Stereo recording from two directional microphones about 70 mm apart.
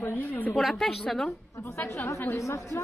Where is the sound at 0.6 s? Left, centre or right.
Centre.